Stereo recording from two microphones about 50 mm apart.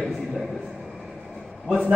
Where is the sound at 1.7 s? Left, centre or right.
Right.